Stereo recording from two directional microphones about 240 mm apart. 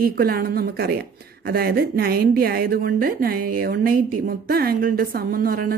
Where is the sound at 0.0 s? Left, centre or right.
Right.